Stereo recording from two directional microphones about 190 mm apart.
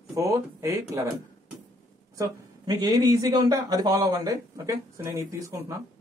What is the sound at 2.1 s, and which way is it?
Speech, 20° right (ahead or behind).